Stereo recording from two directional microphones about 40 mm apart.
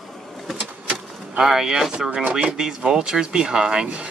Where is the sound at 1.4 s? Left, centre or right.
Centre.